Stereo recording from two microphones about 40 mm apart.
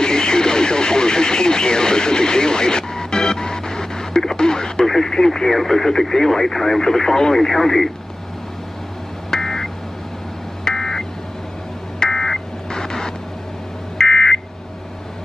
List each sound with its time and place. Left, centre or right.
0.0 s radio: centre
5.6 s speech: centre
9.3 s a sound: centre
13.9 s smoke detector: centre